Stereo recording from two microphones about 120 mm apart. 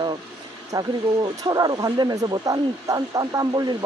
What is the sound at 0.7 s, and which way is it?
Speech, 30° right (ahead or behind).